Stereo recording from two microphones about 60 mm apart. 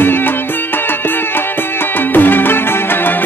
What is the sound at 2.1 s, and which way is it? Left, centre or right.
Music, left.